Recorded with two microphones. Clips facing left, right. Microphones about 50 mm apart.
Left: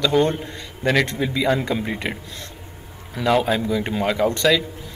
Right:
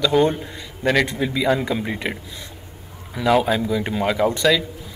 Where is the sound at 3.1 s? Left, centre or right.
Centre.